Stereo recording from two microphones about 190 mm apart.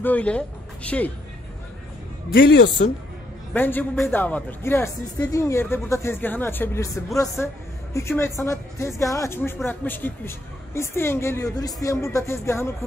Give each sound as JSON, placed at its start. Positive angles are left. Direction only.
{"t": 0.0, "sound": "speech", "side_deg": 5}
{"t": 2.3, "sound": "speech", "side_deg": 60}
{"t": 3.5, "sound": "a man's voice", "side_deg": 10}